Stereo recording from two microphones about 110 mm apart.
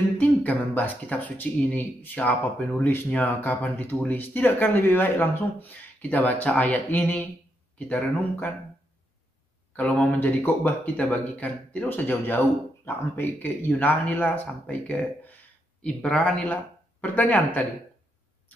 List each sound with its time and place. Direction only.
0.2 s speech: 15° left (ahead or behind)
9.8 s speech: 10° left (ahead or behind)